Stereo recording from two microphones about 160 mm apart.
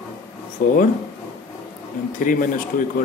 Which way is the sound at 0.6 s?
55° left (ahead or behind).